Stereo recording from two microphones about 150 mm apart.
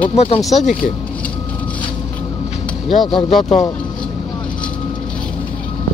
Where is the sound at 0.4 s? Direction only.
Centre (ahead or behind).